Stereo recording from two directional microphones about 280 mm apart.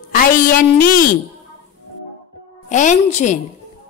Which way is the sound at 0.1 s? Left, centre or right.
Left.